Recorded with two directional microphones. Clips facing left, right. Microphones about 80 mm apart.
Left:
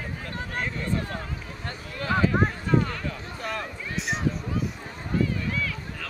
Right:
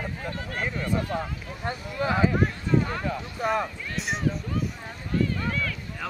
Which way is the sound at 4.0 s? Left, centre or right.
Centre.